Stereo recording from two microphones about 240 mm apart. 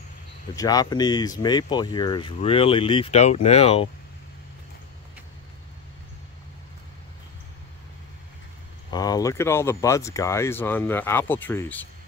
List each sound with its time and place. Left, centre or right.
0.6 s speech: centre
8.9 s speech: centre